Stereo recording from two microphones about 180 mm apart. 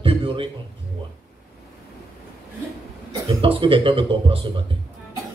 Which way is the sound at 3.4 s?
30° right (ahead or behind).